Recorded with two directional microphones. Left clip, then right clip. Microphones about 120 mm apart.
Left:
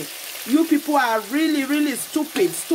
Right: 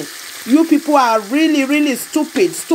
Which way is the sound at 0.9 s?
30° right (ahead or behind).